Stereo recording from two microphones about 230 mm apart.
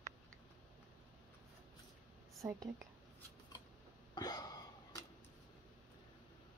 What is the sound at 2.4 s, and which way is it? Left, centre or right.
Speech, centre.